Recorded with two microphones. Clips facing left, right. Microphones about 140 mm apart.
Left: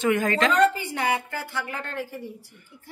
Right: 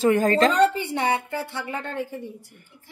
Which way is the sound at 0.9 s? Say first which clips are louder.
Right 2 dB; 25° right (ahead or behind).